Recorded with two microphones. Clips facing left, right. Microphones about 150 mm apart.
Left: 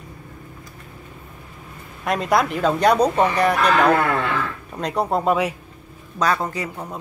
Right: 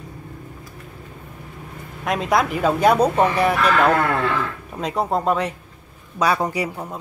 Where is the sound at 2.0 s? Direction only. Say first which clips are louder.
Even; centre (ahead or behind).